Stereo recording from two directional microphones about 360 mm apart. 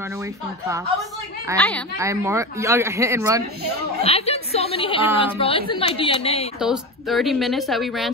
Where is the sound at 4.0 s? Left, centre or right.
Centre.